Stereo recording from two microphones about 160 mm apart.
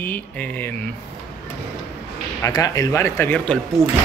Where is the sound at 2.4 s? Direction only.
20° left (ahead or behind).